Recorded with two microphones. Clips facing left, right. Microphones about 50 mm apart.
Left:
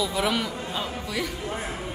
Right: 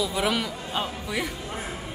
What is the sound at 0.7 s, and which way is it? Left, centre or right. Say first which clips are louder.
Speech: right 1 dB; right.